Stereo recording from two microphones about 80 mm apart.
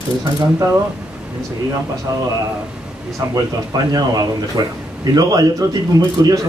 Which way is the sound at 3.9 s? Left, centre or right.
Right.